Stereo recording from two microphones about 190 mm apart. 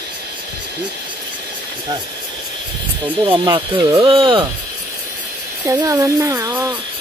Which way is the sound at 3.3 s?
20° right (ahead or behind).